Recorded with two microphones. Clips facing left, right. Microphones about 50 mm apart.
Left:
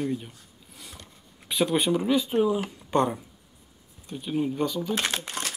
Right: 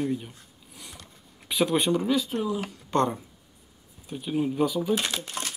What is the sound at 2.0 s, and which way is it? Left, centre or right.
Speech, centre.